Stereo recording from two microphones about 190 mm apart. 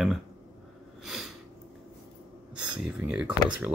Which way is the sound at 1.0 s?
Centre (ahead or behind).